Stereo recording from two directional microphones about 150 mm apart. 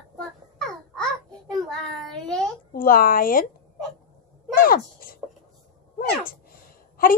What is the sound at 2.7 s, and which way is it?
Speech, 70° left (ahead or behind).